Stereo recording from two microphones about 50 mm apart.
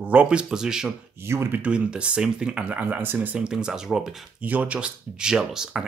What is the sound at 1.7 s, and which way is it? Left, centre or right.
Speech, right.